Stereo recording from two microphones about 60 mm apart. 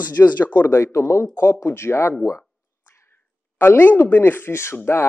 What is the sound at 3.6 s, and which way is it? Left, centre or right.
A woman's voice, left.